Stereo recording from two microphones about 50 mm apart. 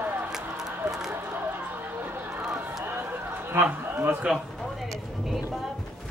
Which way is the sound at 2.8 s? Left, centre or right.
Right.